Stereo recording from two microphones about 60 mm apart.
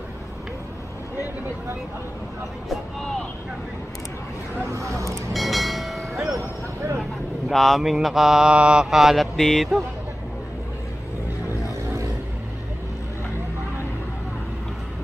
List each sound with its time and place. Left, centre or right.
2.7 s vehicle: centre
4.6 s speech: right
5.3 s bell: centre
7.0 s mantra: centre